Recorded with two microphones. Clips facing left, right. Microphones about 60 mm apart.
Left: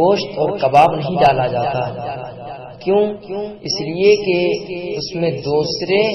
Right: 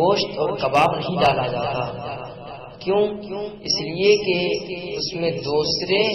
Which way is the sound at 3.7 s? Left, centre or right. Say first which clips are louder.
Left 4 dB; left.